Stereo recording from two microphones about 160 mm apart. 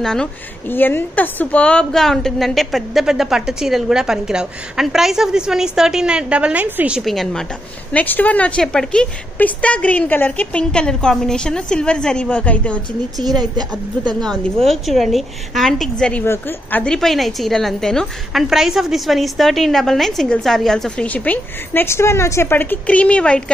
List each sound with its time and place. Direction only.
0.0 s a woman's voice: 5° left (ahead or behind)
13.2 s a woman's voice: 25° right (ahead or behind)
14.2 s a woman's voice: 5° left (ahead or behind)